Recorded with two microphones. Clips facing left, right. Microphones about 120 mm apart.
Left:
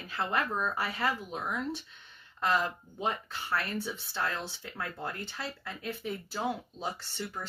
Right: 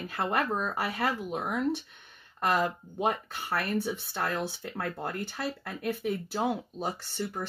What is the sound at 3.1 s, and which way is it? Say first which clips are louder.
Speech: right 2 dB; 55° right (ahead or behind).